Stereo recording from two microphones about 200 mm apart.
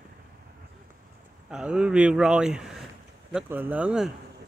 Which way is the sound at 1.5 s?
5° right (ahead or behind).